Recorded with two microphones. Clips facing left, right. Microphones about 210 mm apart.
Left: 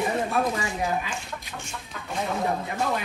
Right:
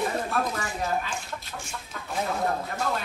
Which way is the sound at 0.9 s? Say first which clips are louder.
Even; centre (ahead or behind).